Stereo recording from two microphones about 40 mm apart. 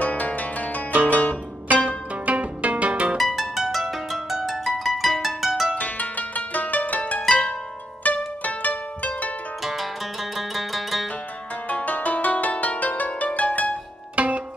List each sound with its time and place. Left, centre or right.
0.0 s music: left
0.9 s music: right
3.2 s harp: centre
5.8 s music: left
9.6 s zither: centre
11.7 s music: left
14.1 s music: right